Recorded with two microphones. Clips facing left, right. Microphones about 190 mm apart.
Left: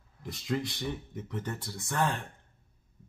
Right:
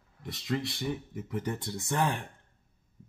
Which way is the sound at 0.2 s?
Centre (ahead or behind).